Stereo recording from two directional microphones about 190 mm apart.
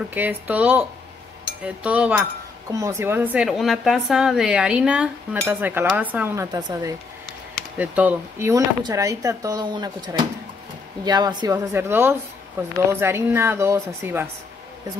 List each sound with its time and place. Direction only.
0.1 s a woman's voice: 10° right (ahead or behind)